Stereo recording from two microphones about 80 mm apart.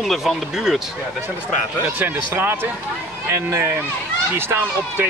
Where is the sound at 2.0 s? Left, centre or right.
Right.